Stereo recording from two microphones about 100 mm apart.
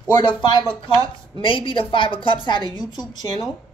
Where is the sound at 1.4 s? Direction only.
60° left (ahead or behind).